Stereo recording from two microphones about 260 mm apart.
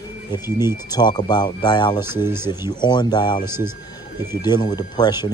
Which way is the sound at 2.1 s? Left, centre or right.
Centre.